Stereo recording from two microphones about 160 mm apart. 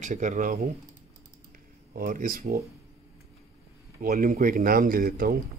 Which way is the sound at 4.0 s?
55° right (ahead or behind).